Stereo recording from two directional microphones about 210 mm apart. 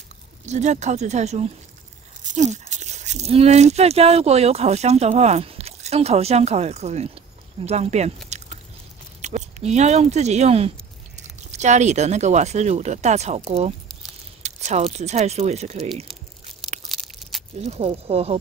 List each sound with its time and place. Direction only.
0.5 s speech: 35° right (ahead or behind)
8.3 s a sound: 35° right (ahead or behind)
9.2 s speech: 35° right (ahead or behind)
16.9 s crushing: centre (ahead or behind)
17.6 s speech: 30° right (ahead or behind)